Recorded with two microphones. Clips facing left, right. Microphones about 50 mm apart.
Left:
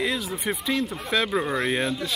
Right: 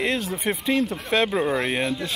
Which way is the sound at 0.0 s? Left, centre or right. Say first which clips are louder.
Right 2 dB; right.